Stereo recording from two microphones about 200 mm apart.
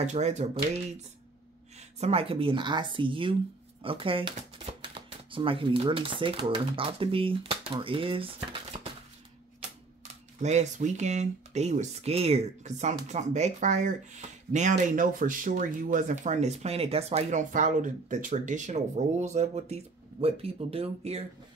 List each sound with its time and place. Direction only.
0.0 s speech: 35° right (ahead or behind)
1.8 s speech: 30° right (ahead or behind)
10.4 s speech: 35° right (ahead or behind)